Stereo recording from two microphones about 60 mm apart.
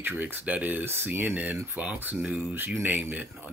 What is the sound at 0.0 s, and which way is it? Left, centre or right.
Speech, right.